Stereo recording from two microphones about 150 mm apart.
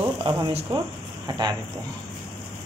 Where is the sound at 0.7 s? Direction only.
25° right (ahead or behind).